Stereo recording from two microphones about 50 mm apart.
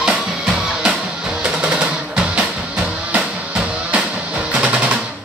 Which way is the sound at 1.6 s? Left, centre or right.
Centre.